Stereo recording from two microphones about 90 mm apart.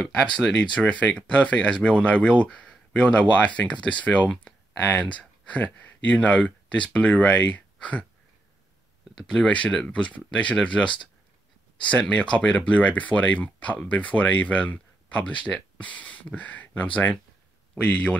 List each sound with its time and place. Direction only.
0.0 s speech: 10° left (ahead or behind)
9.3 s speech: 10° left (ahead or behind)